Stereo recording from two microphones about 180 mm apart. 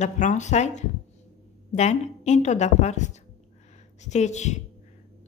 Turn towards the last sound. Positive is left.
turn(degrees=40)  # may be behind; listen again after turning